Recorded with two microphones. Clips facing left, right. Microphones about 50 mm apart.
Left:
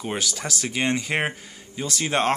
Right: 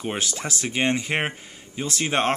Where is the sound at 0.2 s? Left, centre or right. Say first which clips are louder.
Even; right.